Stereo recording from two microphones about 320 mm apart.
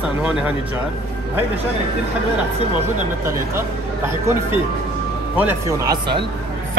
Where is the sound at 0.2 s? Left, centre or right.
Centre.